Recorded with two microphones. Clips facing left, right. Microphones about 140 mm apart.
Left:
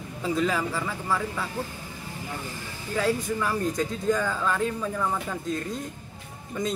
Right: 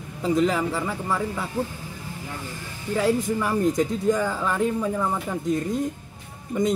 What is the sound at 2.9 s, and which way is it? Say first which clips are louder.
Speech: right 4 dB; centre (ahead or behind).